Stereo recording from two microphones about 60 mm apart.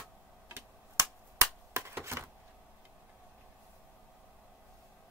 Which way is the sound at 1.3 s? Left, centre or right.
Right.